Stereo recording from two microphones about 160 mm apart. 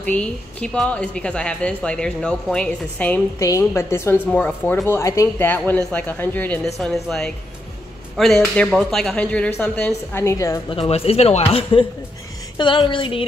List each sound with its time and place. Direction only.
0.0 s a woman's voice: 10° left (ahead or behind)
3.3 s a woman's voice: 20° left (ahead or behind)
10.7 s speech: 35° left (ahead or behind)